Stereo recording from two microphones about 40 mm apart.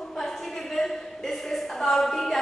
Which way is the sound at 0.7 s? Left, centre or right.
Centre.